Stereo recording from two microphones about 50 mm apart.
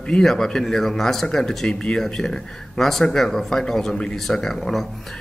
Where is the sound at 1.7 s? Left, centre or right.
Centre.